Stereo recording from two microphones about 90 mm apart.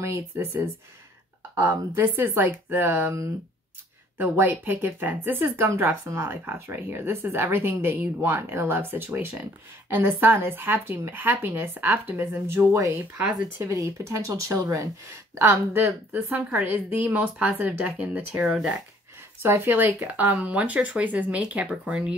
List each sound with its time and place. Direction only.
0.0 s speech: 25° right (ahead or behind)
1.6 s a woman's voice: 25° right (ahead or behind); by 18.8 s 10° right (ahead or behind)
19.4 s a woman's voice: 25° right (ahead or behind)